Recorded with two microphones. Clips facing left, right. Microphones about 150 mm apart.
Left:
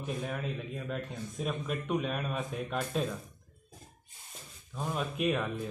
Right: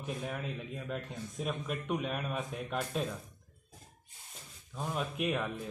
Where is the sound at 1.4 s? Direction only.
15° right (ahead or behind).